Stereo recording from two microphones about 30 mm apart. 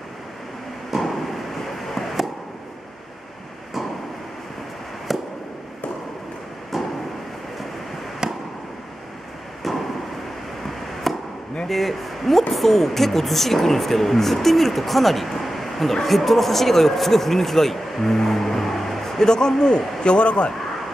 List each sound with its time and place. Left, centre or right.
0.9 s a sound: centre
5.1 s fireworks: centre
8.2 s fireworks: right
9.6 s a sound: centre
11.1 s chop: centre
11.6 s speech: centre
19.1 s a man's voice: left